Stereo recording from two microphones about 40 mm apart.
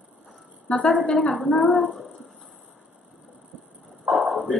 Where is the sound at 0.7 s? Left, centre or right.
Left.